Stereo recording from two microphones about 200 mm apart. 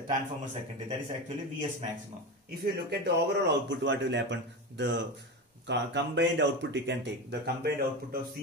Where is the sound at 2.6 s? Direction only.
60° right (ahead or behind).